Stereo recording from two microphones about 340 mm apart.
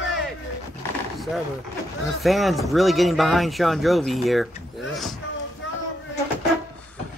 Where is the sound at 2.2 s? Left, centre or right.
Centre.